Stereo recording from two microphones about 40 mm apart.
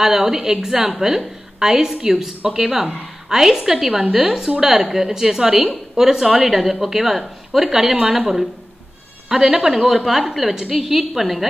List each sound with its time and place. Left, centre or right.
0.0 s a woman's voice: centre